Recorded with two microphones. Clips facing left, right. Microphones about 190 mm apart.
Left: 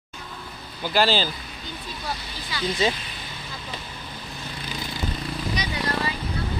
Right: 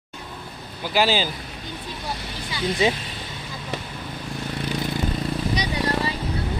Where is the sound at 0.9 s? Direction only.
10° right (ahead or behind).